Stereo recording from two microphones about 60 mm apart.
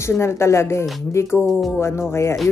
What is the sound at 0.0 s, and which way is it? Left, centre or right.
A woman's voice, left.